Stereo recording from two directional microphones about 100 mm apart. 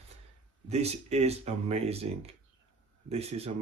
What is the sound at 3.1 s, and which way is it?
Speech, 90° right.